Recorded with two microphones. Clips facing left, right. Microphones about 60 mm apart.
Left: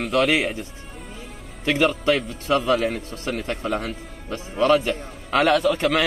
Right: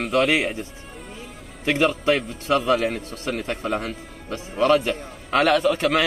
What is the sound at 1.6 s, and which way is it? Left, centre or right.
A man's voice, centre.